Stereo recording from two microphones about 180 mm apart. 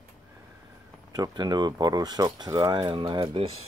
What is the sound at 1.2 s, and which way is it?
Speech, 20° right (ahead or behind).